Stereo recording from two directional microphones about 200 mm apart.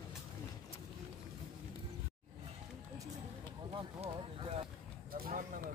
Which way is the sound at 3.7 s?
30° right (ahead or behind).